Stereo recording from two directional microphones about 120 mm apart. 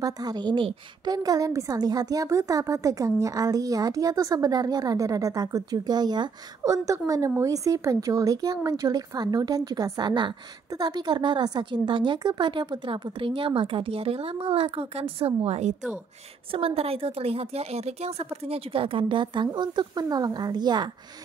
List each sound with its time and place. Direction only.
0.0 s a woman's voice: 35° right (ahead or behind)